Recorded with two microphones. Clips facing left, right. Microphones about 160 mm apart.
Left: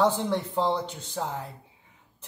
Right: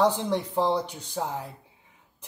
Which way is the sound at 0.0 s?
15° right (ahead or behind).